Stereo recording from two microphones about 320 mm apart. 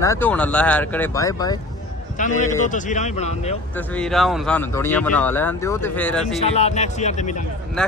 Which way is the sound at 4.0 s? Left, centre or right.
Centre.